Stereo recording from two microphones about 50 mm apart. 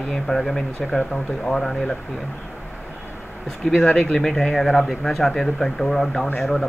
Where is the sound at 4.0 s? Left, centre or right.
Left.